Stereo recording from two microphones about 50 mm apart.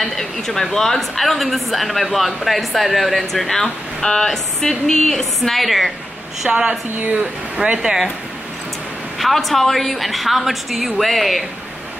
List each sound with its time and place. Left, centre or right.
0.0 s a woman's voice: centre
6.4 s speech: centre
7.0 s speech: right
7.6 s speech: centre
9.2 s a woman's voice: centre